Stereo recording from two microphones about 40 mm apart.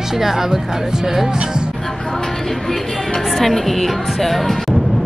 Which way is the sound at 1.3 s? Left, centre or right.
Right.